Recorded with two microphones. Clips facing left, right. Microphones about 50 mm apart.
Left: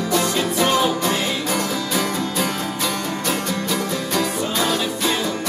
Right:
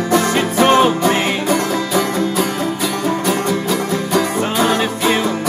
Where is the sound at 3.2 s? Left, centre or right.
Centre.